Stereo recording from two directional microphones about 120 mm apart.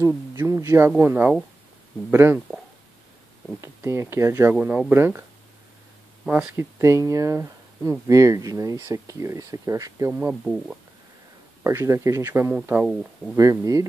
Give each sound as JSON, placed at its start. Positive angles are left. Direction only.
{"t": 0.0, "sound": "speech", "side_deg": -25}
{"t": 3.6, "sound": "speech", "side_deg": -25}
{"t": 4.6, "sound": "speech", "side_deg": -15}
{"t": 6.2, "sound": "speech", "side_deg": -10}
{"t": 6.5, "sound": "speech", "side_deg": -20}
{"t": 10.4, "sound": "speech", "side_deg": -5}
{"t": 11.6, "sound": "speech", "side_deg": -20}